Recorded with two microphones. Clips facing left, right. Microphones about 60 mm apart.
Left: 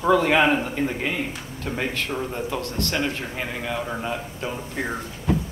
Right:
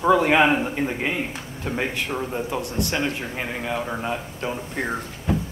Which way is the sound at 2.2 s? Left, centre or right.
Centre.